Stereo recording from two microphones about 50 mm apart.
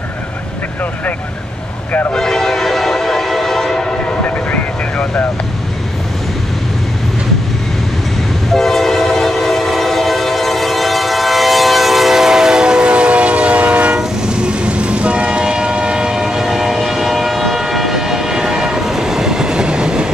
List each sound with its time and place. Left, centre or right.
1.9 s speech: left
2.1 s train: centre
4.2 s vehicle: left
8.5 s train: centre; by 13.9 s right
13.9 s train: centre